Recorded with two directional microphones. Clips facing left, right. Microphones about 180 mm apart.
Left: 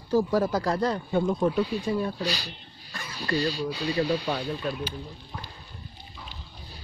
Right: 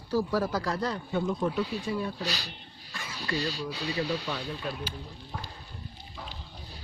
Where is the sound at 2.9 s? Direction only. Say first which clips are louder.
Left 1 dB; 40° left (ahead or behind).